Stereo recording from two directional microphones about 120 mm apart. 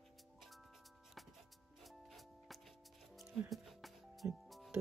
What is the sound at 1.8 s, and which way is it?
Music, centre (ahead or behind).